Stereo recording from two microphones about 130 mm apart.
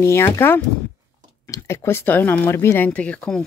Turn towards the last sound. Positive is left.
turn(degrees=10)  # may be behind; listen again after turning